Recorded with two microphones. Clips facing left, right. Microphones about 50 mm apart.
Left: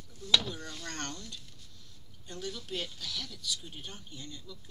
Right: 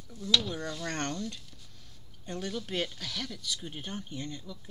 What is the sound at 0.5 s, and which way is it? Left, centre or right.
Speech, right.